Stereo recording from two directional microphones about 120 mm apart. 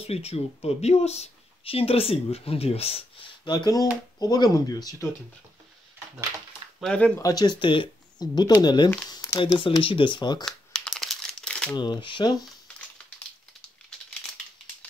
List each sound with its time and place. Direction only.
0.0 s speech: 60° left (ahead or behind)
3.4 s speech: 35° left (ahead or behind)
6.8 s speech: 5° left (ahead or behind)
7.2 s speech: 30° left (ahead or behind)
9.1 s crumpling: 30° left (ahead or behind)
9.6 s speech: 45° left (ahead or behind)
10.4 s crumpling: 5° left (ahead or behind)
11.7 s speech: 40° left (ahead or behind)